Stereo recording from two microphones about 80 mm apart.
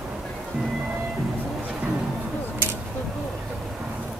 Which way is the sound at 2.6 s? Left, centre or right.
Right.